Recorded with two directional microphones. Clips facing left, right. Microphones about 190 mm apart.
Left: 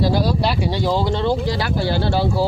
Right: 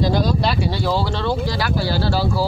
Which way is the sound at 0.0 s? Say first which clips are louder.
Even; 10° left (ahead or behind).